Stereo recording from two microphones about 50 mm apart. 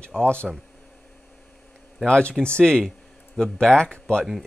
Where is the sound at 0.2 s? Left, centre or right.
Left.